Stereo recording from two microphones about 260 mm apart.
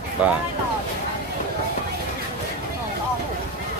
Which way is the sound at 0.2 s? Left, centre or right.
Centre.